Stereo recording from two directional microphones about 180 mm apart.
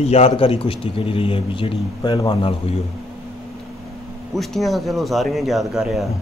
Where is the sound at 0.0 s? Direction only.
35° left (ahead or behind).